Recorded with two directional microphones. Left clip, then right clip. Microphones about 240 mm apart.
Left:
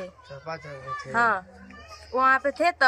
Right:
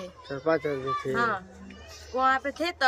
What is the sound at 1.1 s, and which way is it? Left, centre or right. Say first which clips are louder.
A woman's voice: left 7 dB; centre.